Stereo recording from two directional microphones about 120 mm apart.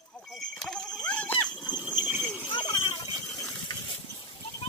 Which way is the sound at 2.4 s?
40° left (ahead or behind).